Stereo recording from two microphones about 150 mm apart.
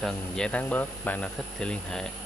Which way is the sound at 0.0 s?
5° left (ahead or behind).